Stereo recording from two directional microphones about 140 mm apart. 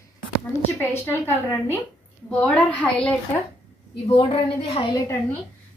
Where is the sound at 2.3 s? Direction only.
10° left (ahead or behind).